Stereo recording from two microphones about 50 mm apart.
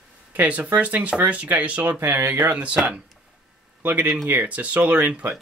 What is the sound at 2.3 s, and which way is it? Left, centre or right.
Speech, right.